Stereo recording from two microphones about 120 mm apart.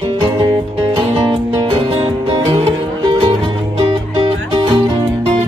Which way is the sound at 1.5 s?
50° right (ahead or behind).